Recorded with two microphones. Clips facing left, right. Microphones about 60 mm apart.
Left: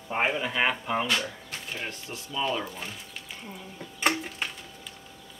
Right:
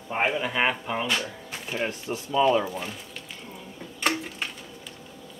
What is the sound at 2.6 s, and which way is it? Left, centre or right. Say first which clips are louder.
Speech: right 5 dB; centre.